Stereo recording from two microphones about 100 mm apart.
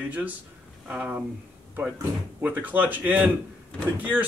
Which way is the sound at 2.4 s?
15° right (ahead or behind).